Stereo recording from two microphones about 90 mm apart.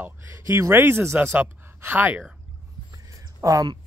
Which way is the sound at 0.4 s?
30° right (ahead or behind).